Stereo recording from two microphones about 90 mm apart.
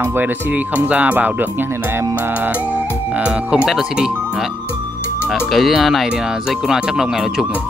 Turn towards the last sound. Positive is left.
turn(degrees=-5)  # may be behind; listen again after turning